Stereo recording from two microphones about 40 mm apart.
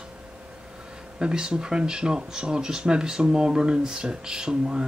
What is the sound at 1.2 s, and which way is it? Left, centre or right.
Speech, centre.